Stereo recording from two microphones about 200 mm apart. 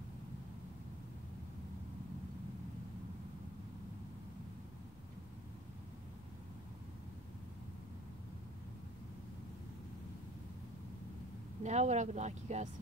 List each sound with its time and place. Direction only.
11.6 s speech: 35° right (ahead or behind)